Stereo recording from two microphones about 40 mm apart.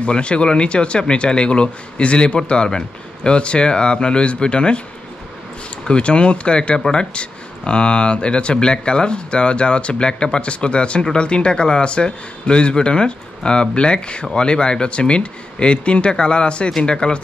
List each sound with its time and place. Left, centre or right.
0.0 s speech: left
5.9 s speech: left